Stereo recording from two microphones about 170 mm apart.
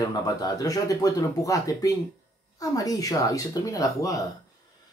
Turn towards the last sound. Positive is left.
turn(degrees=20)  # may be behind; listen again after turning